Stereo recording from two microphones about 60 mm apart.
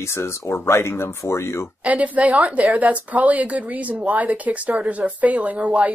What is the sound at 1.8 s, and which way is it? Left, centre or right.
Speech, right.